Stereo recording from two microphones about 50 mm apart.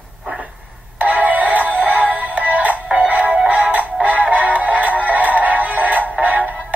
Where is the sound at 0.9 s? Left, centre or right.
Right.